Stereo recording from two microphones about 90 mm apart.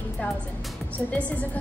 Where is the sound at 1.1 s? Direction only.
15° left (ahead or behind).